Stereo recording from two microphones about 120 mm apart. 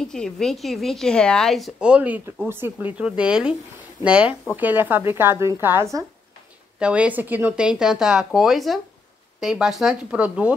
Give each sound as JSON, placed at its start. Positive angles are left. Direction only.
{"t": 0.0, "sound": "a woman's voice", "side_deg": 5}
{"t": 6.8, "sound": "a woman's voice", "side_deg": -10}